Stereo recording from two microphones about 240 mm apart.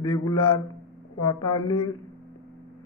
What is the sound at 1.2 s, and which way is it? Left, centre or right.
Speech, centre.